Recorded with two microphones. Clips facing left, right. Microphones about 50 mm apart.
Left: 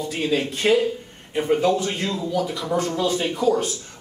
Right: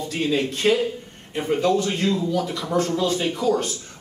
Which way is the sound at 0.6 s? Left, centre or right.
Centre.